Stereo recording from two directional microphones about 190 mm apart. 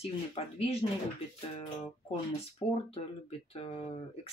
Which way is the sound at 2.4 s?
30° left (ahead or behind).